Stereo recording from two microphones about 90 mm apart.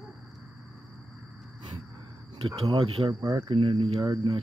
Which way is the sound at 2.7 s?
80° right.